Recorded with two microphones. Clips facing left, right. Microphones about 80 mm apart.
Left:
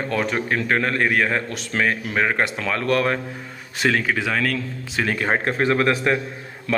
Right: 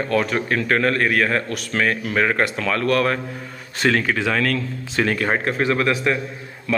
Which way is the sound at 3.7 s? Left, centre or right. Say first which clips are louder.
Right 1 dB; centre.